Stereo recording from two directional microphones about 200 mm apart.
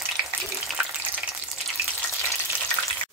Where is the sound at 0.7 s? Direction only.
Centre (ahead or behind).